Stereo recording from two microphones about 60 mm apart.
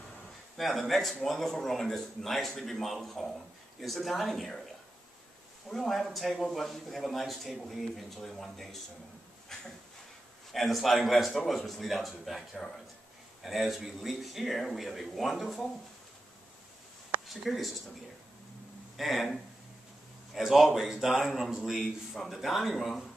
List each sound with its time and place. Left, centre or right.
0.6 s a man's voice: centre
5.7 s a man's voice: centre
17.3 s a man's voice: centre
18.9 s a man's voice: centre